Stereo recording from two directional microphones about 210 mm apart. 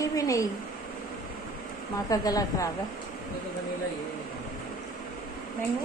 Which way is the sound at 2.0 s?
15° left (ahead or behind).